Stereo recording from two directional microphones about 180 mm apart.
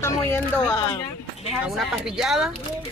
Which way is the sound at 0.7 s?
25° left (ahead or behind).